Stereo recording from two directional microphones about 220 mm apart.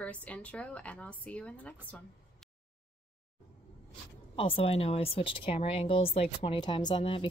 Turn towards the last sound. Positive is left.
turn(degrees=25)  # may be behind; listen again after turning